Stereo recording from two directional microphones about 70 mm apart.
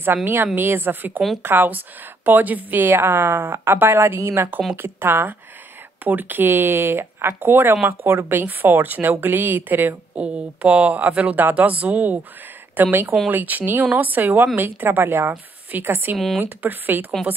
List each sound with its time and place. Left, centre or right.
0.0 s a woman's voice: right
10.1 s a woman's voice: centre